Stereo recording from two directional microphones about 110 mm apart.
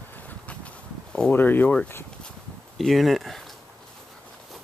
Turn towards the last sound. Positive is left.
turn(degrees=0)  # may be behind; listen again after turning